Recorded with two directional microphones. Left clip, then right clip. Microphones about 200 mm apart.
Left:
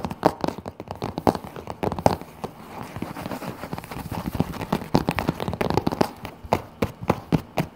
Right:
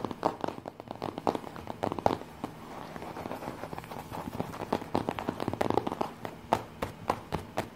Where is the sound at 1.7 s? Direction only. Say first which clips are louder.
Left 6 dB; 25° left (ahead or behind).